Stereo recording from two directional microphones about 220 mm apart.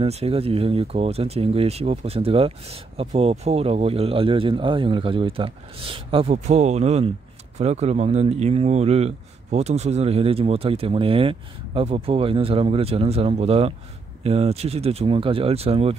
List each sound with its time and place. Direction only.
0.0 s speech: 25° right (ahead or behind)